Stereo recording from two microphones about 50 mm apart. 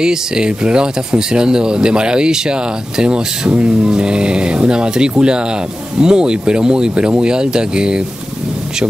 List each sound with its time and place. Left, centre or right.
0.0 s speech: centre